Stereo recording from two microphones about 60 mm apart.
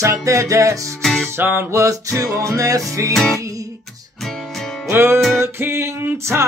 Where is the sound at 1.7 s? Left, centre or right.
Right.